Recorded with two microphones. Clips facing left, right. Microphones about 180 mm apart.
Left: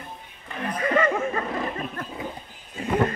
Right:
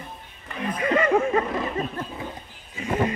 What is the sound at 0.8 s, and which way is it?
Speech, 15° right (ahead or behind).